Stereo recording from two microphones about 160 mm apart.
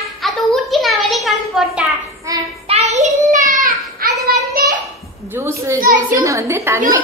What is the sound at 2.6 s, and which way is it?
Child singing, 45° right (ahead or behind).